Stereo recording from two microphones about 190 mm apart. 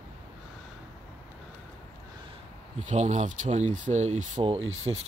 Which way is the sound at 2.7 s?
40° right (ahead or behind).